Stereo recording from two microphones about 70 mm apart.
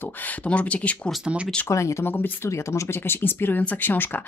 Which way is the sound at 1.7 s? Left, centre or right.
Left.